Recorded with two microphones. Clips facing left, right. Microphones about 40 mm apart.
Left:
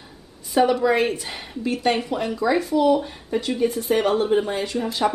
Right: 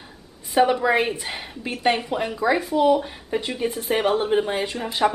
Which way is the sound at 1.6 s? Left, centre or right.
Right.